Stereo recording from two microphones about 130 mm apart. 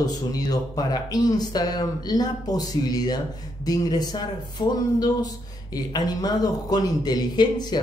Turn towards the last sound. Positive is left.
turn(degrees=30)  # may be behind; listen again after turning